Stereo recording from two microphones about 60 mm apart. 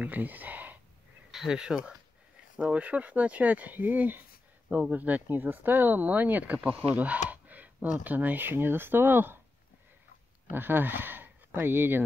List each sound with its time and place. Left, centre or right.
0.0 s a sound: right
1.3 s speech: centre; by 9.4 s right
10.5 s speech: right